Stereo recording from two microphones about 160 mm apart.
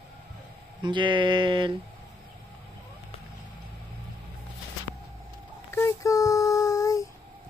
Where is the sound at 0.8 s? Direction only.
30° right (ahead or behind).